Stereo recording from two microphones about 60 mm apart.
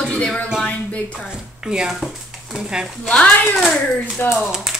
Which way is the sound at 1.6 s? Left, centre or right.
Centre.